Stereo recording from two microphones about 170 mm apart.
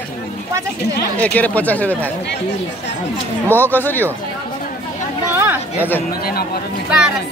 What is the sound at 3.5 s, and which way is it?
Speech, 10° left (ahead or behind).